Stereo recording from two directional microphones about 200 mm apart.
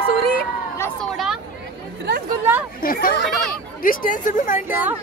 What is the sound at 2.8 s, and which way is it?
Chatter, 45° left (ahead or behind).